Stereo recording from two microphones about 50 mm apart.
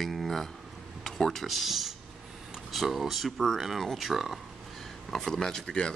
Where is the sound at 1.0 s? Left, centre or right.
Centre.